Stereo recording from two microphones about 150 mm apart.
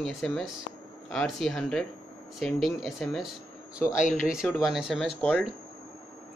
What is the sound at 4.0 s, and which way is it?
Speech, 55° left (ahead or behind).